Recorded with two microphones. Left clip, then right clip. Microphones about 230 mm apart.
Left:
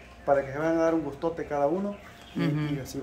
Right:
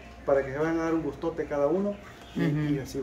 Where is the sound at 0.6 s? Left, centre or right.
Left.